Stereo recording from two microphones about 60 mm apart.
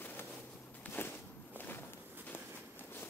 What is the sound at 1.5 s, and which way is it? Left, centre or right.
Walk, left.